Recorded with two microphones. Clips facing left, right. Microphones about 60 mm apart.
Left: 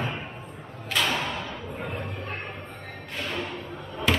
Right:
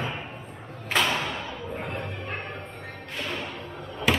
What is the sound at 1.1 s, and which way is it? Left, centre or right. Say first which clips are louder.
Thump: even; centre.